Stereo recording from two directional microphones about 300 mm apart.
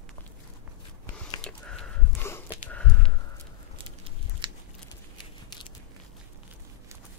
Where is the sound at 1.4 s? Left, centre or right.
Centre.